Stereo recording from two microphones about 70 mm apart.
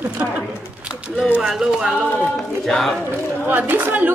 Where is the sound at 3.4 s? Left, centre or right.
Right.